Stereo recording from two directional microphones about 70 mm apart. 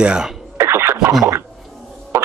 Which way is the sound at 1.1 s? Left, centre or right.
Right.